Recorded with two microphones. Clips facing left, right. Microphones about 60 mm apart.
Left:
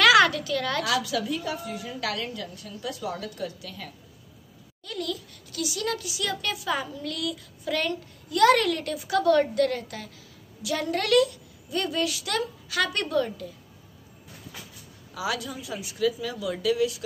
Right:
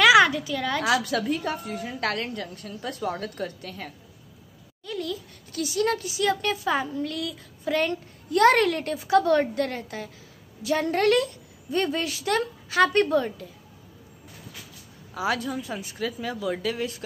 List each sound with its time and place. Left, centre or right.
0.0 s a woman's voice: centre
1.0 s a woman's voice: right
4.8 s a woman's voice: right
15.1 s a woman's voice: right